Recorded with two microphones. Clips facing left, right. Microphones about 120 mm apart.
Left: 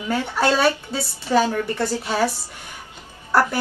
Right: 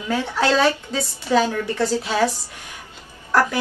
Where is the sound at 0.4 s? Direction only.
10° left (ahead or behind).